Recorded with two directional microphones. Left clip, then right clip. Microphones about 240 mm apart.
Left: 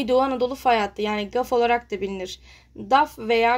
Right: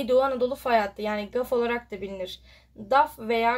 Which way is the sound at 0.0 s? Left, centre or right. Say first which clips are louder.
Left 2 dB; left.